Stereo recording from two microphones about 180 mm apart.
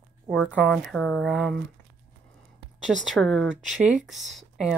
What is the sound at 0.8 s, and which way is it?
Speech, 5° left (ahead or behind).